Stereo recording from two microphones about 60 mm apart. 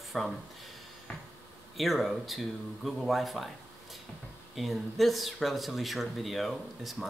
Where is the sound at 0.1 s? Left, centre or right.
Centre.